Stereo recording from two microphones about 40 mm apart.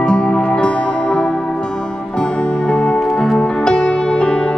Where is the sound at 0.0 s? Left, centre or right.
Left.